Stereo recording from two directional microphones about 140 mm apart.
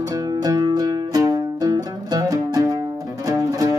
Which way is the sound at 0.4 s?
30° right (ahead or behind).